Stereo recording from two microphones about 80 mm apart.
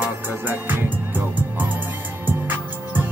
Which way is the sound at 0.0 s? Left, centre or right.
Right.